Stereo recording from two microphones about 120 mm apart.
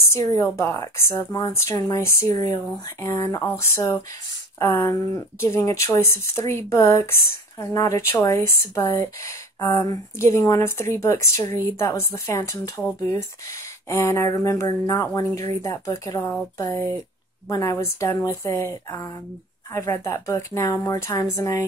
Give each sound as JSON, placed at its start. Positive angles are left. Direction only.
{"t": 0.1, "sound": "speech", "side_deg": 30}
{"t": 4.8, "sound": "speech", "side_deg": 30}
{"t": 17.5, "sound": "speech", "side_deg": 25}